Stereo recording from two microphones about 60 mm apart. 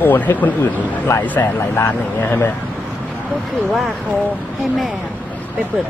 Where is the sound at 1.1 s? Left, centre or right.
Left.